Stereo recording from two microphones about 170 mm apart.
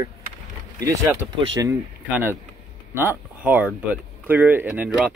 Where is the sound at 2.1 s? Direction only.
10° right (ahead or behind).